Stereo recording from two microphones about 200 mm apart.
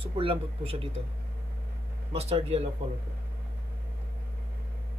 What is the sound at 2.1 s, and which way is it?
Speech, 30° right (ahead or behind).